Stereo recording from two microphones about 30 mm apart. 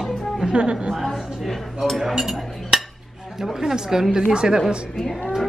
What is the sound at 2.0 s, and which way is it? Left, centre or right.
Chink, centre.